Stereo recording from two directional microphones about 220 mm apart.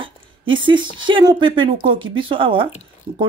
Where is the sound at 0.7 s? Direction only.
20° right (ahead or behind).